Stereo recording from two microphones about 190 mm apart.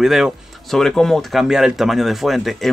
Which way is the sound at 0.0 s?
Centre (ahead or behind).